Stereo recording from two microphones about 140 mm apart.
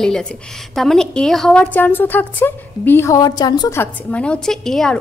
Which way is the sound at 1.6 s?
15° left (ahead or behind).